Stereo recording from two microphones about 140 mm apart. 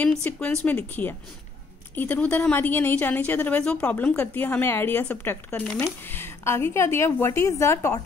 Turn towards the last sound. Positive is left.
turn(degrees=20)  # may be behind; listen again after turning